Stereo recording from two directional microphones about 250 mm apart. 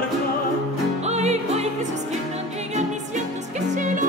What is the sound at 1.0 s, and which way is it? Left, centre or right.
Music, right.